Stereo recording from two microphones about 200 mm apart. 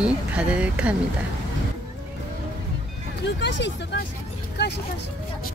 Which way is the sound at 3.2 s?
60° left (ahead or behind).